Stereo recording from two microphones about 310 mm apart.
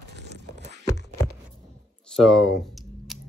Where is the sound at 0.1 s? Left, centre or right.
Right.